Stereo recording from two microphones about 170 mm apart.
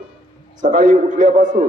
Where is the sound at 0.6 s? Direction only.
50° right (ahead or behind).